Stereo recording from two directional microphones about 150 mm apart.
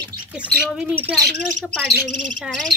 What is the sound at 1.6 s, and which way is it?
Speech, 10° left (ahead or behind).